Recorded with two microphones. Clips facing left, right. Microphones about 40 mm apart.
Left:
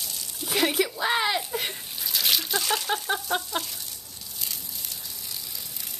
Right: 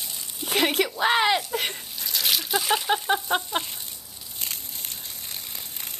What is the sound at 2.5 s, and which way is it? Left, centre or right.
Speech, centre.